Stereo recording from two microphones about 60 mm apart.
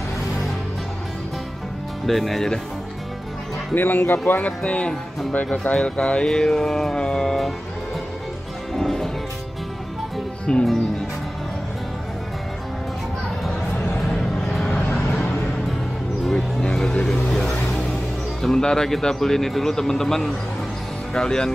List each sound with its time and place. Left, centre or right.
2.0 s speech: centre
3.7 s speech: left; by 7.5 s centre
8.7 s music: centre
10.4 s speech: centre
14.1 s vehicle: centre
14.9 s vehicle: left
16.3 s music: centre
17.3 s vehicle: centre
18.4 s speech: centre